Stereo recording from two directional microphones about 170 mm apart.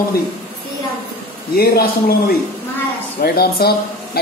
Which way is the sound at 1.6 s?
65° left (ahead or behind).